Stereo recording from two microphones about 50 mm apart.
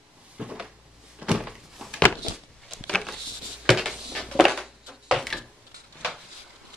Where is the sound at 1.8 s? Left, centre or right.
Centre.